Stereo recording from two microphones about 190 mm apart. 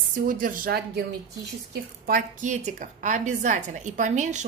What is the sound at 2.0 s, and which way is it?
A woman's voice, 45° right (ahead or behind).